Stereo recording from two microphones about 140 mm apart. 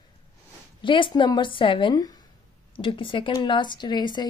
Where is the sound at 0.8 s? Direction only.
35° left (ahead or behind).